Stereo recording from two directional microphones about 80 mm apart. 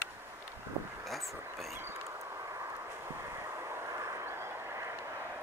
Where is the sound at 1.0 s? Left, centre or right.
Centre.